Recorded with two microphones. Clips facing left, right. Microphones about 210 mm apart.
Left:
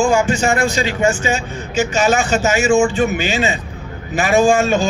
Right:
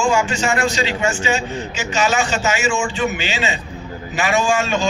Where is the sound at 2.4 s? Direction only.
40° left (ahead or behind).